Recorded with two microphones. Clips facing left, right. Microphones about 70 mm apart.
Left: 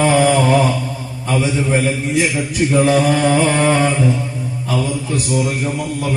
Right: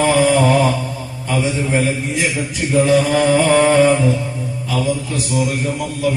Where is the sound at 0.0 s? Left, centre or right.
Left.